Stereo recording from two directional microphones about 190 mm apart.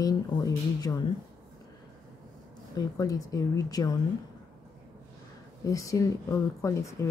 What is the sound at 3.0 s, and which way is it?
Speech, 15° left (ahead or behind).